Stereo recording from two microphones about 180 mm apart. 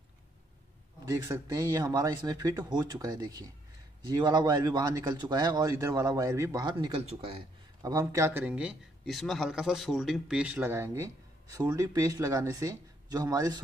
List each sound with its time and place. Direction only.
1.0 s a man's voice: 20° right (ahead or behind)